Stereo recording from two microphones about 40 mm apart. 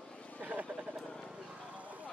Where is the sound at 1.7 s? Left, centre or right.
Right.